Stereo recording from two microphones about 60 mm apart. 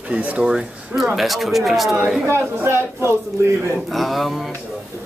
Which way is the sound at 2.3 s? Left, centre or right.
Right.